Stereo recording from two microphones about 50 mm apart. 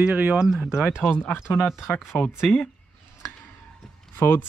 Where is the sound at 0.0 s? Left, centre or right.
Right.